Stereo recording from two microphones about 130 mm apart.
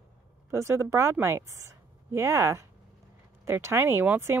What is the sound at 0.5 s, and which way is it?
Speech, 20° right (ahead or behind).